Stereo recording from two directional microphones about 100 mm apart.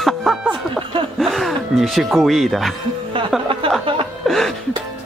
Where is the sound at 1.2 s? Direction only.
Centre (ahead or behind).